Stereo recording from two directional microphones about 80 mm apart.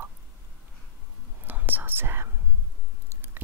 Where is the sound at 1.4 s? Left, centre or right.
Right.